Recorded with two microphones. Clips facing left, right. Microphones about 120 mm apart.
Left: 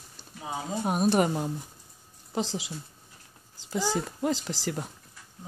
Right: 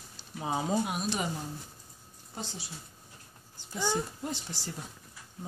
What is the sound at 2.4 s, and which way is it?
Speech, 90° left.